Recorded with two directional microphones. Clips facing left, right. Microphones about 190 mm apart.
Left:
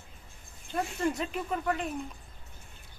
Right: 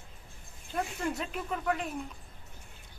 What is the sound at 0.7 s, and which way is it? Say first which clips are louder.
Speech: left 3 dB; centre (ahead or behind).